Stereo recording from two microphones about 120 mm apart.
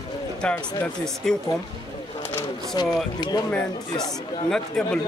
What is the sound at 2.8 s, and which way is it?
Speech, 35° left (ahead or behind).